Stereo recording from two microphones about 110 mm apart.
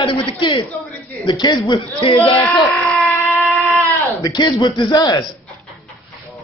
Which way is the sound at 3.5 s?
20° left (ahead or behind).